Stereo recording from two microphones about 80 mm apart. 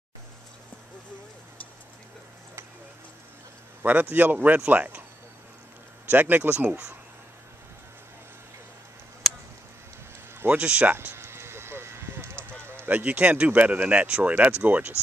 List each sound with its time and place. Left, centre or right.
3.8 s a man's voice: right
6.0 s a man's voice: right
10.4 s a man's voice: centre
11.0 s a sound: right
12.6 s honk: right
12.9 s a man's voice: centre